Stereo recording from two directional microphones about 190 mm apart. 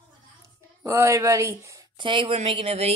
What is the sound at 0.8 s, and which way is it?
Speech, 15° right (ahead or behind).